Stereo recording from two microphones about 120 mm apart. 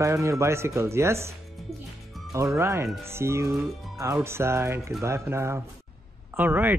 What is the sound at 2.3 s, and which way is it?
Speech, 25° right (ahead or behind).